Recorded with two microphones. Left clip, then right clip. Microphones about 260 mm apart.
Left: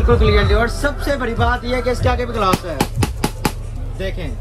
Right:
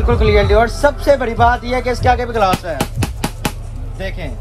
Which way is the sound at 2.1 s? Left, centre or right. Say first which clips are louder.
Right 3 dB; centre.